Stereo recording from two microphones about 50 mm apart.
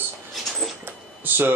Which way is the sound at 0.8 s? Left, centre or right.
Right.